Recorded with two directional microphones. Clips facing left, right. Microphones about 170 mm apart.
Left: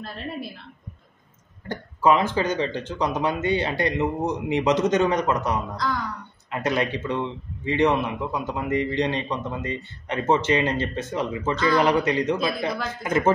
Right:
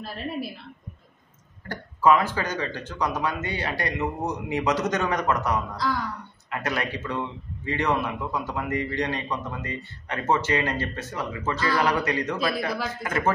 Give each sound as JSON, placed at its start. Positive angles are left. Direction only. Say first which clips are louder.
{"t": 0.0, "sound": "a woman's voice", "louder": "right 1 dB", "side_deg": -5}
{"t": 1.7, "sound": "a man's voice", "louder": "even", "side_deg": 20}